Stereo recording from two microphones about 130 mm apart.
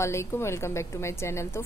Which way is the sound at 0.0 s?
20° left (ahead or behind).